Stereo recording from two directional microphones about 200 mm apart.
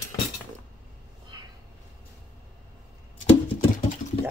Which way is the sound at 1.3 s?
20° right (ahead or behind).